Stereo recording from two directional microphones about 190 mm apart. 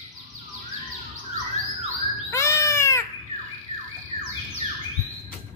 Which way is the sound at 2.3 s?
15° left (ahead or behind).